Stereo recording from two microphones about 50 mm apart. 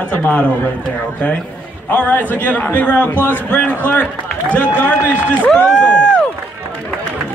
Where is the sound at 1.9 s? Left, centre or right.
Left.